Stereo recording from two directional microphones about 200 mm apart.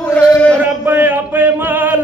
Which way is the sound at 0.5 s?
10° right (ahead or behind).